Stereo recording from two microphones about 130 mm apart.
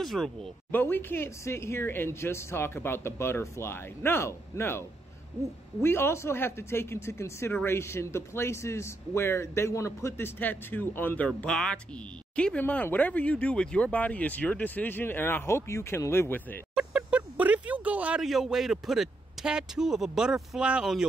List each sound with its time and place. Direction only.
0.0 s speech: 5° left (ahead or behind)
16.7 s speech: 10° right (ahead or behind)